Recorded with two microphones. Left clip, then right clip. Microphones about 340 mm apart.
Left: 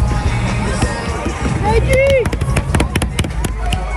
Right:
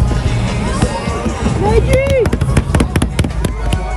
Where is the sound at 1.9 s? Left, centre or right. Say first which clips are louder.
Left 4 dB; right.